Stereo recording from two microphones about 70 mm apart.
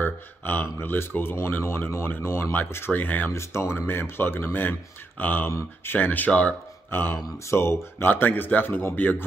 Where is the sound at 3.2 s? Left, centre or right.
Left.